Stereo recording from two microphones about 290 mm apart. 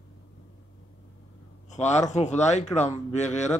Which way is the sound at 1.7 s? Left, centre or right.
Left.